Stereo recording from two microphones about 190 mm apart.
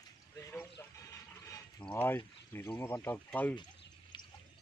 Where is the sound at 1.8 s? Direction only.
10° left (ahead or behind).